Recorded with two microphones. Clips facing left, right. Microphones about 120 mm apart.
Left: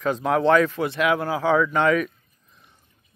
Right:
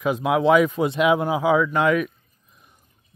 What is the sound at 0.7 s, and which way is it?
Speech, 20° right (ahead or behind).